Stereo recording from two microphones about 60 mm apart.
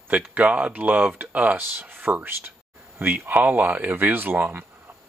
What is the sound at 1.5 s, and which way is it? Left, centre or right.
Speech, right.